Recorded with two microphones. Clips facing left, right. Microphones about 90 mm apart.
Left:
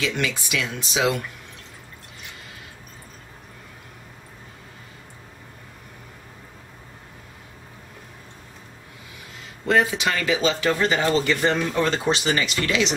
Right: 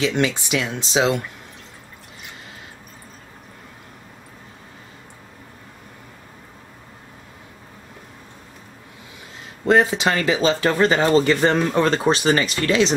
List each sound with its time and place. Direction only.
0.0 s speech: 30° right (ahead or behind)
9.7 s speech: 35° right (ahead or behind)